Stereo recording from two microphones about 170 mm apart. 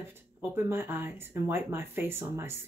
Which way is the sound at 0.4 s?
15° right (ahead or behind).